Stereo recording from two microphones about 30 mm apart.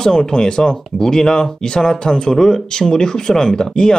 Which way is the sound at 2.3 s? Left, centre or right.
Centre.